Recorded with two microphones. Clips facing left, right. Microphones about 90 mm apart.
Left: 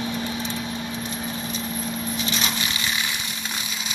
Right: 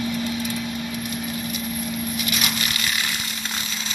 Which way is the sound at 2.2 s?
30° left (ahead or behind).